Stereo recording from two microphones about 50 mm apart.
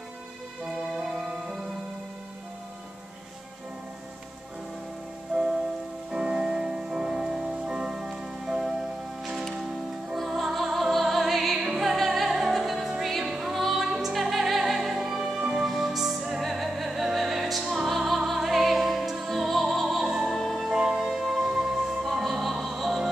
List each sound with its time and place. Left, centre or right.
0.9 s music: centre
5.3 s rain on surface: centre
6.1 s music: centre
20.7 s music: centre
21.1 s music: centre